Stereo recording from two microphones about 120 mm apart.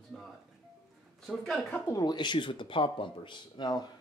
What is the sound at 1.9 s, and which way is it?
Speech, 30° left (ahead or behind).